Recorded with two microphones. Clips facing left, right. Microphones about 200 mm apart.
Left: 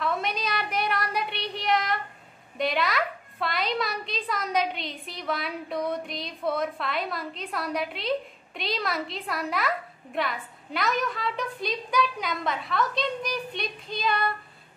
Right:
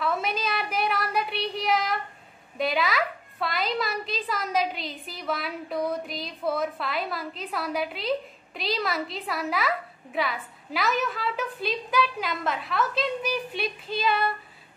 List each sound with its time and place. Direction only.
0.0 s child singing: centre (ahead or behind)
2.5 s a woman's voice: centre (ahead or behind)